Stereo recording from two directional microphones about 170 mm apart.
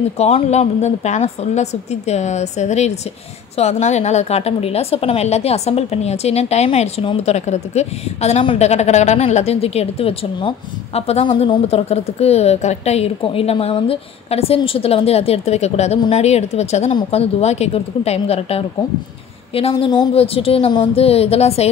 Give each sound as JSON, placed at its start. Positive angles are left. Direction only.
{"t": 0.2, "sound": "a woman's voice", "side_deg": 40}